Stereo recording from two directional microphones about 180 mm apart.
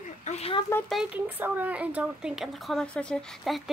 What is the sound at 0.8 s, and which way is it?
Speech, centre (ahead or behind).